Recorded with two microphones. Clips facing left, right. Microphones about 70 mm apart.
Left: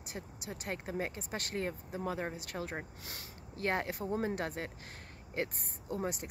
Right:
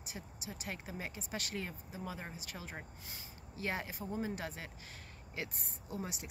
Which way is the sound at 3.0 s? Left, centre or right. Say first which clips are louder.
Left 4 dB; left.